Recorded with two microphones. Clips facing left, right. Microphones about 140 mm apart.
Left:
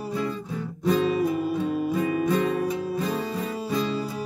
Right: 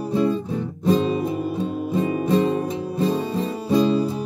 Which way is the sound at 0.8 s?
30° right (ahead or behind).